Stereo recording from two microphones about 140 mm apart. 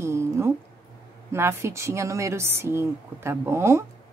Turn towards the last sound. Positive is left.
turn(degrees=-20)  # may be behind; listen again after turning